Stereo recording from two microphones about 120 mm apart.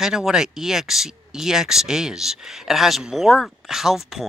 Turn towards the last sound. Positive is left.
turn(degrees=0)  # may be behind; listen again after turning